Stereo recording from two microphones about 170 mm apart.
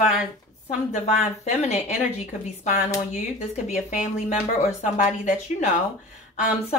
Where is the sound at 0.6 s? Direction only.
45° left (ahead or behind).